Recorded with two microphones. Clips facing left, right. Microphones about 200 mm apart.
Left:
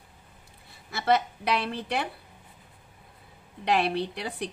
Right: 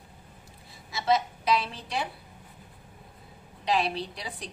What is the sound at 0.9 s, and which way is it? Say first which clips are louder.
A woman's voice: left 1 dB; 60° left (ahead or behind).